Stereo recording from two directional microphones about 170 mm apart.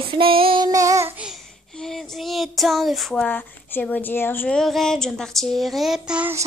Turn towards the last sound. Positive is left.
turn(degrees=-10)  # may be behind; listen again after turning